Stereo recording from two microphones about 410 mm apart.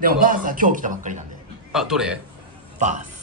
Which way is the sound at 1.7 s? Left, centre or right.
Centre.